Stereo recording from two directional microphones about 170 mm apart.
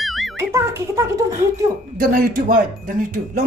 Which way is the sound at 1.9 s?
55° right (ahead or behind).